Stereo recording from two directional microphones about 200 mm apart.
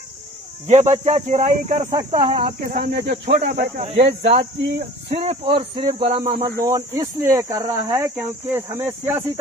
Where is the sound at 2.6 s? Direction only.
45° right (ahead or behind).